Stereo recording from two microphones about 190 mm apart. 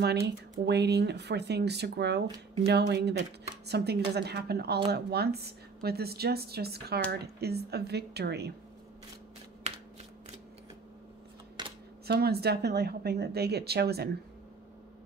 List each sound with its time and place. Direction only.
0.7 s a woman's voice: 60° right (ahead or behind)
9.6 s a sound: 35° right (ahead or behind)
11.6 s camera: 25° right (ahead or behind)
12.1 s a woman's voice: 55° right (ahead or behind)